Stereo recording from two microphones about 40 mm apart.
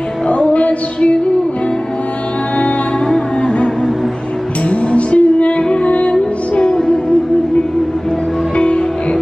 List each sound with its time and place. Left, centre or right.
0.3 s a sound: left
3.4 s music: left
5.1 s music: left
8.5 s music: left